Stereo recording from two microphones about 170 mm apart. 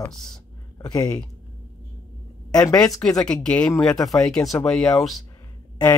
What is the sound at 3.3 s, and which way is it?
Speech, 5° left (ahead or behind).